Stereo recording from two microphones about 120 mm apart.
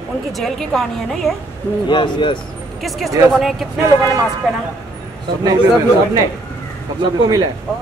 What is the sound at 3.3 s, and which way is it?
Speech, centre (ahead or behind).